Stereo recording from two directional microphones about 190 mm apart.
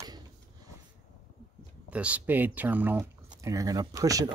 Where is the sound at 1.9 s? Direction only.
5° right (ahead or behind).